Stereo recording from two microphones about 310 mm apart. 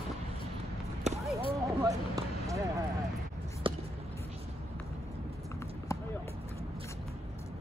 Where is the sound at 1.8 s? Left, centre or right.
Centre.